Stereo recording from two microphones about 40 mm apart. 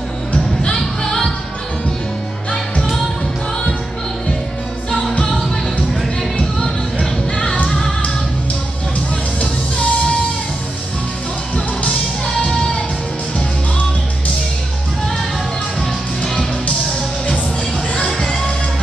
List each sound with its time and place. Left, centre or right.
0.7 s music: centre
4.9 s music: left
6.3 s music: left
9.4 s music: left
18.0 s music: centre